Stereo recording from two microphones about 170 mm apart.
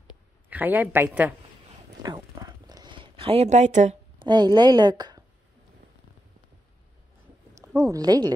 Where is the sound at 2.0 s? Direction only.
20° right (ahead or behind); by 4.0 s 45° right (ahead or behind).